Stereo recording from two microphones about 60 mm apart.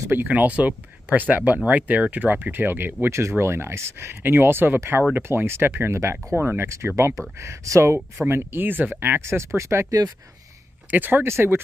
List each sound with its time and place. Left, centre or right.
0.3 s speech: right
4.2 s speech: right
8.3 s speech: right
9.2 s speech: right
10.9 s speech: right
11.2 s speech: right